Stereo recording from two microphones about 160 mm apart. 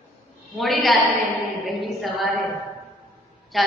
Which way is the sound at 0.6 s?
Centre (ahead or behind).